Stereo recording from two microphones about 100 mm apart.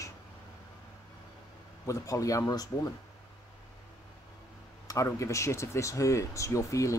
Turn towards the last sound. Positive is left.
turn(degrees=30)  # may be behind; listen again after turning